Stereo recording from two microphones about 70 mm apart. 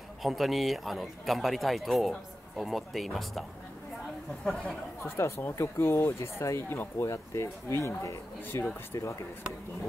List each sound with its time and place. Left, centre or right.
0.2 s speech: centre
5.0 s speech: left